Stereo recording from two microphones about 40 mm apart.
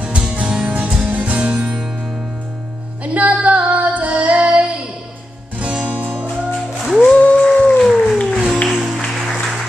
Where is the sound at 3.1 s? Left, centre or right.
Right.